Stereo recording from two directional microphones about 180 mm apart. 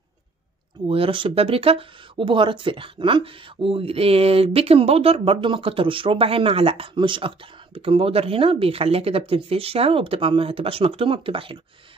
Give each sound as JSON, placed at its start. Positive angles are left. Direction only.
{"t": 0.8, "sound": "speech", "side_deg": -30}